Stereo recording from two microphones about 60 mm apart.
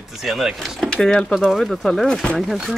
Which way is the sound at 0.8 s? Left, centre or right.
Centre.